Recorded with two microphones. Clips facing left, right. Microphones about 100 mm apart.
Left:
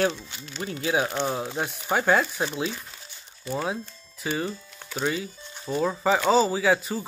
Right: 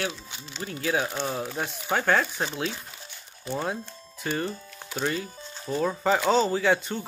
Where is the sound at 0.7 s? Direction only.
20° left (ahead or behind).